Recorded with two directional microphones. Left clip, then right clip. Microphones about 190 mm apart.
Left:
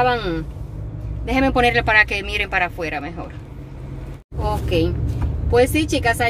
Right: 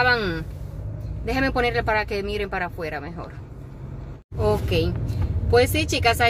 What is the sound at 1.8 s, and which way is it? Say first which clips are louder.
Speech: left 7 dB; 15° right (ahead or behind).